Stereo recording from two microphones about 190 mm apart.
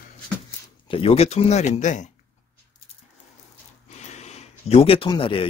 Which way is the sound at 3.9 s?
35° left (ahead or behind).